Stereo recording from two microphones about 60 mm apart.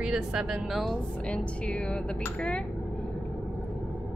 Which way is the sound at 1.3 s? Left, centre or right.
Left.